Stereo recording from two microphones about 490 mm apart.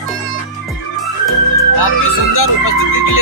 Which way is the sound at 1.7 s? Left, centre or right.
Left.